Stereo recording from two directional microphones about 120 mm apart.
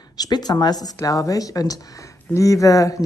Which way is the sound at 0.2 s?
35° left (ahead or behind).